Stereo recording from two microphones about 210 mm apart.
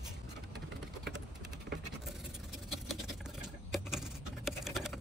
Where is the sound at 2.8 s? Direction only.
Centre (ahead or behind).